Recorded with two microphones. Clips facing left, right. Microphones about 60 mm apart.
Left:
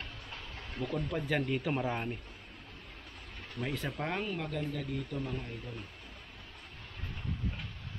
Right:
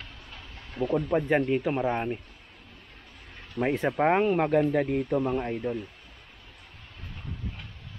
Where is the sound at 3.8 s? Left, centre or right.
Right.